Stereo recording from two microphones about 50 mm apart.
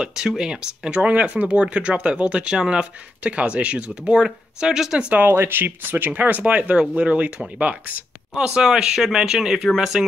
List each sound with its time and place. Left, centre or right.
0.0 s speech: centre
5.3 s speech: right
8.5 s speech: centre